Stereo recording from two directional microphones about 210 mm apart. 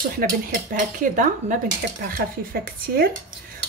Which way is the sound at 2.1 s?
45° right (ahead or behind).